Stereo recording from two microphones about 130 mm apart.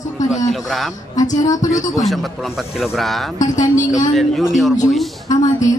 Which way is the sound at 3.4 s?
25° left (ahead or behind).